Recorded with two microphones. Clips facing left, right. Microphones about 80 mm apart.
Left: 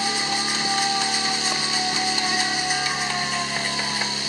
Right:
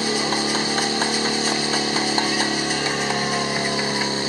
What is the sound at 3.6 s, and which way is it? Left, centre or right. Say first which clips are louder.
Music: right 4 dB; right.